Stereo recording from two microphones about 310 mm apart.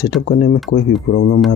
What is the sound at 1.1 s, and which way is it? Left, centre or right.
Speech, left.